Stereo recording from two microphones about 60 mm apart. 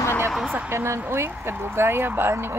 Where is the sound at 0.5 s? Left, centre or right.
Right.